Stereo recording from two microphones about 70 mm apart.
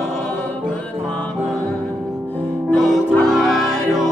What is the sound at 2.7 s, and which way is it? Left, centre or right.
Music, centre.